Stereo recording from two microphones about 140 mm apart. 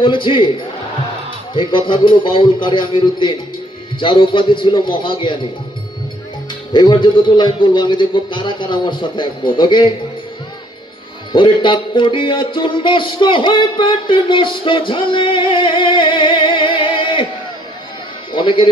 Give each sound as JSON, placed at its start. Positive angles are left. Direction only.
{"t": 0.0, "sound": "music", "side_deg": 35}
{"t": 6.7, "sound": "music", "side_deg": 35}
{"t": 11.3, "sound": "music", "side_deg": 35}
{"t": 18.3, "sound": "speech", "side_deg": 35}